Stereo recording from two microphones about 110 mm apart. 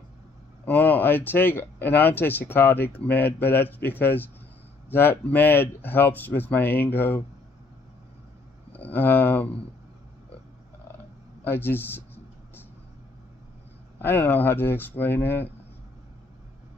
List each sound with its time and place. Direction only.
0.7 s speech: 15° left (ahead or behind)
8.7 s speech: 15° left (ahead or behind)
11.4 s speech: 20° left (ahead or behind)
13.9 s speech: 20° left (ahead or behind)